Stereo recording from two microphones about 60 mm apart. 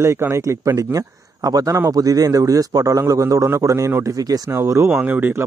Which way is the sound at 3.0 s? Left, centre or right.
Right.